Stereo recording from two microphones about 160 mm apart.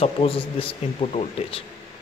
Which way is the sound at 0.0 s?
35° left (ahead or behind).